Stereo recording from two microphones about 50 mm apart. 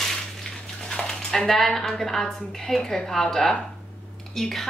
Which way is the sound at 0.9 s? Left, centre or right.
Centre.